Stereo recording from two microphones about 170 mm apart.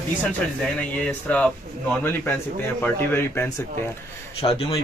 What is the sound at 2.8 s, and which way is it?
Speech, 10° left (ahead or behind).